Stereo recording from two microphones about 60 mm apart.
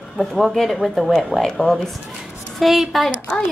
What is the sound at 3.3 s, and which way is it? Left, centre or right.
Speech, centre.